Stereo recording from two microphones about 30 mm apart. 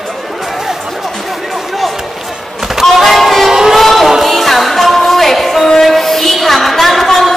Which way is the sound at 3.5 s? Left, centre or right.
Centre.